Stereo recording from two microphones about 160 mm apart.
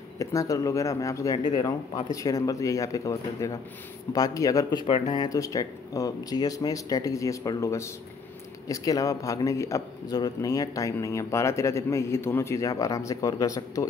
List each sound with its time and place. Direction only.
0.2 s a man's voice: 20° left (ahead or behind); by 5.2 s 40° left (ahead or behind)
5.2 s a man's voice: 20° left (ahead or behind)